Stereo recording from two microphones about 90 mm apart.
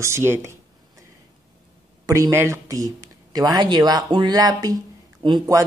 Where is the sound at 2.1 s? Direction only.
35° right (ahead or behind).